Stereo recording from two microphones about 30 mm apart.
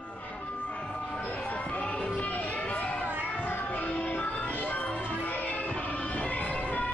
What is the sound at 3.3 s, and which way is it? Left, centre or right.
Music, left.